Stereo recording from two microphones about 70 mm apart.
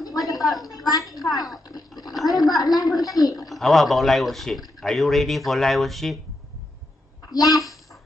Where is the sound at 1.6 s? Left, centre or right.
Left.